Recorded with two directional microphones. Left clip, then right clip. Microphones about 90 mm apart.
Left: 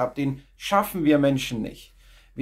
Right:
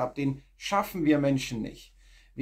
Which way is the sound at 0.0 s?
25° left (ahead or behind).